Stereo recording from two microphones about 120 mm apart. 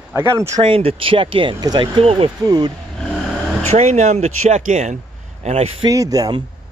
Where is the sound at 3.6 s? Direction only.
60° right (ahead or behind); by 4.9 s 85° right.